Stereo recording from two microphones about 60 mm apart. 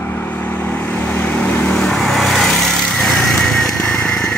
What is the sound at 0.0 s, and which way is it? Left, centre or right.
Vehicle, left.